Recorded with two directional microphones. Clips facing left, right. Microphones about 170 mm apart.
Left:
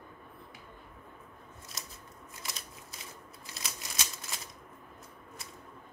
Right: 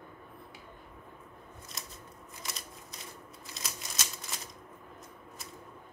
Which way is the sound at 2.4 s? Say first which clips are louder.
Right 1 dB; 5° left (ahead or behind).